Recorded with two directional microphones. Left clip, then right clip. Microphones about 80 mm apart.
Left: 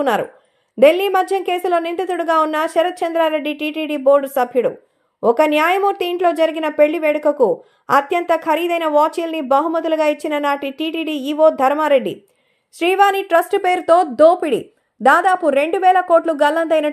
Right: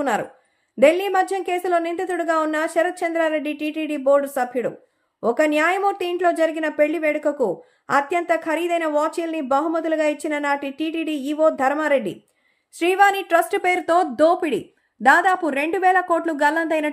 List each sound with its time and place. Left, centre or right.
0.7 s a woman's voice: left
13.1 s a woman's voice: centre
13.8 s a woman's voice: centre